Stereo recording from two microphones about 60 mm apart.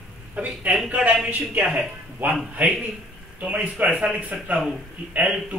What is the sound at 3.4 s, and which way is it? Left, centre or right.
Speech, right.